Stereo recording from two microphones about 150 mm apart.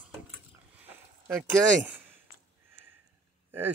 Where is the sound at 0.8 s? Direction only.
15° right (ahead or behind).